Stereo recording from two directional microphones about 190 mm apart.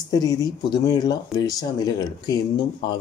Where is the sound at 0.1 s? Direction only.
20° left (ahead or behind).